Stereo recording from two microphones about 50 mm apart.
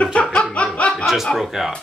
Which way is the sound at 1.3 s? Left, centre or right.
Centre.